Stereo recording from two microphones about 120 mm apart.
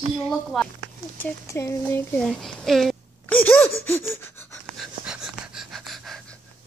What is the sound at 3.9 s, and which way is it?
Gasp, 20° left (ahead or behind).